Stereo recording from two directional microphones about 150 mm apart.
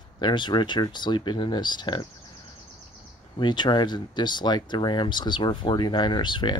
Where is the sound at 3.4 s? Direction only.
30° left (ahead or behind).